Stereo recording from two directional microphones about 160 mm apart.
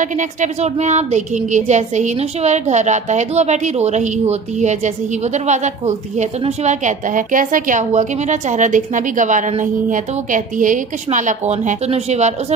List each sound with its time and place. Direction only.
0.0 s speech: 50° right (ahead or behind)